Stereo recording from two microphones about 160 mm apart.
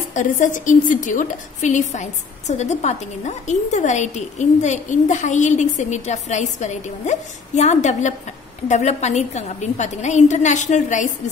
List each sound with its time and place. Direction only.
0.1 s a woman's voice: 55° left (ahead or behind)